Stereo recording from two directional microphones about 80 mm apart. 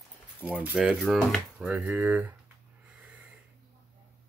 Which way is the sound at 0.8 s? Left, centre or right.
Centre.